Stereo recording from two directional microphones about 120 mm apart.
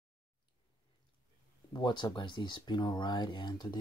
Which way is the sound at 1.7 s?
35° left (ahead or behind).